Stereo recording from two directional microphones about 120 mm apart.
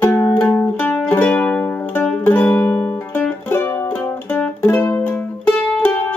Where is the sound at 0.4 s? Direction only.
15° left (ahead or behind).